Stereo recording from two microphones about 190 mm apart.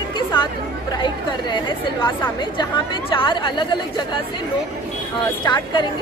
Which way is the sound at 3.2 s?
25° left (ahead or behind).